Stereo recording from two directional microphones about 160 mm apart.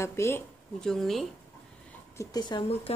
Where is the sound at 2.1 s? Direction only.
25° left (ahead or behind).